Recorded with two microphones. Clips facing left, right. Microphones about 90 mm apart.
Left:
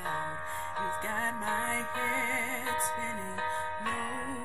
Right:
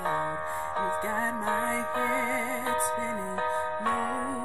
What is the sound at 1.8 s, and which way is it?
Music, 35° right (ahead or behind).